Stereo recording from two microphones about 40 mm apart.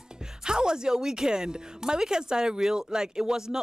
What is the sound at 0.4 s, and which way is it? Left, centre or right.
A woman's voice, centre.